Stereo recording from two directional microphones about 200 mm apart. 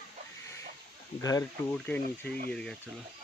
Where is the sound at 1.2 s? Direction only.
15° left (ahead or behind).